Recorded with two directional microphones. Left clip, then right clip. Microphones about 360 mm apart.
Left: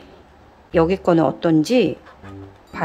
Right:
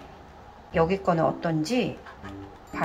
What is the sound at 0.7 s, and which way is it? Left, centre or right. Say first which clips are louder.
Speech: left 7 dB; centre.